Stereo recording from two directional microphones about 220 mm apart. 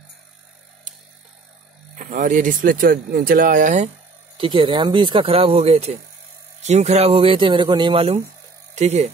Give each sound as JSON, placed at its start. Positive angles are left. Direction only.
{"t": 2.0, "sound": "speech", "side_deg": -35}